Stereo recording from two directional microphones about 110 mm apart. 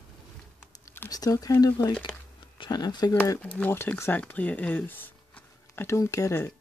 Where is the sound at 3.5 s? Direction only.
20° left (ahead or behind).